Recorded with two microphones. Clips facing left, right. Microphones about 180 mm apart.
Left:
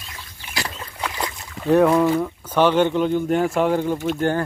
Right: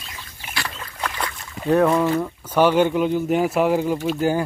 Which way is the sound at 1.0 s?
20° left (ahead or behind).